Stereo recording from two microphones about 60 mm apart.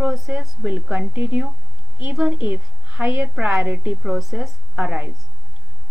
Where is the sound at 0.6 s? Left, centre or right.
Right.